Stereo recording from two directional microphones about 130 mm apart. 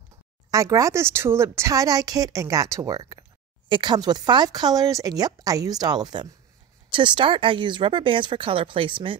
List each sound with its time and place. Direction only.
0.5 s speech: 25° right (ahead or behind)